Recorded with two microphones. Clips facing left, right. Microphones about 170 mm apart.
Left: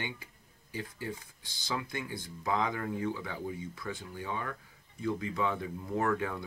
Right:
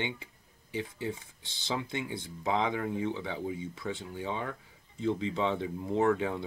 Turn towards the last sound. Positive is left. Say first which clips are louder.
# right 4 dB
turn(degrees=-20)  # may be behind; listen again after turning